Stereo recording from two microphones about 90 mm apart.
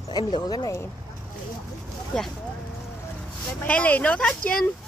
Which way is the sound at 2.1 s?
10° left (ahead or behind).